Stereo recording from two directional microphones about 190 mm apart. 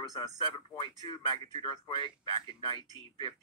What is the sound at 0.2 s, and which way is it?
Speech, 20° left (ahead or behind).